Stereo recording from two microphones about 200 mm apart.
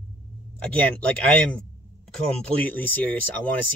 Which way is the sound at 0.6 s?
5° left (ahead or behind).